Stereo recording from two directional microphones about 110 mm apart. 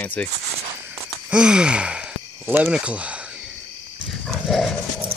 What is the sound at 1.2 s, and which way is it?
Gasp, 10° right (ahead or behind).